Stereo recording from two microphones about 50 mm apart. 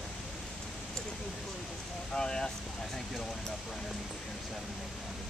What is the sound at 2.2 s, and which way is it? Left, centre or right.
Vehicle, centre.